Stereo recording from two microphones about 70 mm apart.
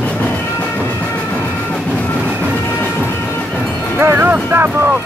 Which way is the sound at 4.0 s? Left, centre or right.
Right.